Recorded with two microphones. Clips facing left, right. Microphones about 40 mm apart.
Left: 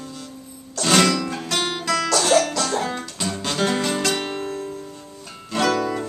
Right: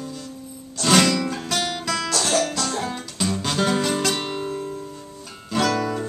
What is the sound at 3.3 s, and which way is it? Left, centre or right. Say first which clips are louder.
Music: even; centre.